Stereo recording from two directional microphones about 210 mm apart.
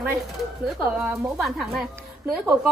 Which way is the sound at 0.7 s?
5° right (ahead or behind).